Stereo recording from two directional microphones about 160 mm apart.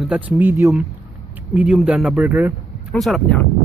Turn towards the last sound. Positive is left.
turn(degrees=5)  # may be behind; listen again after turning